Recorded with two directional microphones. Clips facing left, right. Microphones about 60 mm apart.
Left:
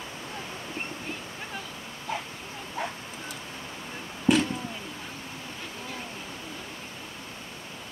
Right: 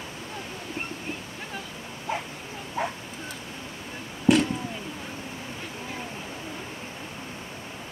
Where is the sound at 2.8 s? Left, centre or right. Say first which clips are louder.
Right 4 dB; centre.